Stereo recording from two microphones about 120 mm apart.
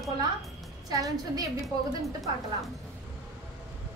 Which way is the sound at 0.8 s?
30° right (ahead or behind).